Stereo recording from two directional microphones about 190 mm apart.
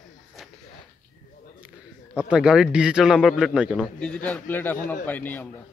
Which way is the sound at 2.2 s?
5° right (ahead or behind).